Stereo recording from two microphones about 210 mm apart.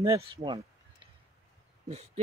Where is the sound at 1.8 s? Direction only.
30° right (ahead or behind).